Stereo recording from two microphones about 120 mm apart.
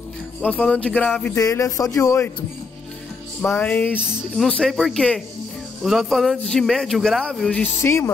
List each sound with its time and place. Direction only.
0.4 s speech: 10° left (ahead or behind)
1.3 s a man's voice: 25° left (ahead or behind)
3.4 s speech: 15° left (ahead or behind)
4.4 s speech: centre (ahead or behind)
7.6 s a man's voice: 20° left (ahead or behind)